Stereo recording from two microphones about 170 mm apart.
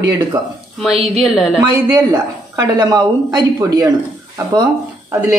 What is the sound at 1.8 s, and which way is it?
A woman's voice, 15° right (ahead or behind).